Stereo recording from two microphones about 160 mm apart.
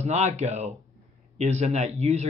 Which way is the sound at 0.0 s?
45° right (ahead or behind).